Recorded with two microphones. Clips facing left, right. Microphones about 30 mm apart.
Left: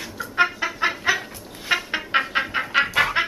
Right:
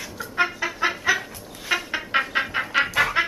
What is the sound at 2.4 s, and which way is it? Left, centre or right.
Chicken, centre.